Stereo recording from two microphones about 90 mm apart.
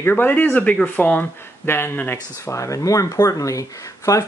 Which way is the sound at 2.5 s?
35° left (ahead or behind).